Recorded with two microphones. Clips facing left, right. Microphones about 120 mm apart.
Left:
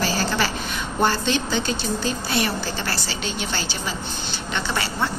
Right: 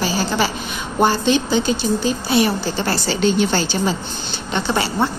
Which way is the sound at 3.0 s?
35° right (ahead or behind).